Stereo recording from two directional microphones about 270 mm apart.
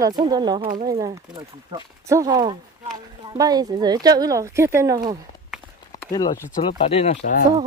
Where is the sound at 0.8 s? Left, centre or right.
Centre.